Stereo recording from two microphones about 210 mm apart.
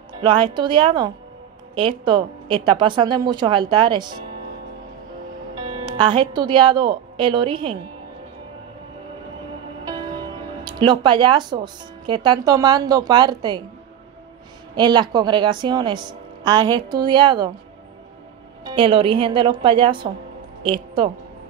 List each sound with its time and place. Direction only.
0.1 s speech: 20° right (ahead or behind)
5.7 s speech: 20° right (ahead or behind)
10.6 s speech: 20° right (ahead or behind)
14.8 s speech: 20° right (ahead or behind)
18.6 s a woman's voice: 25° right (ahead or behind)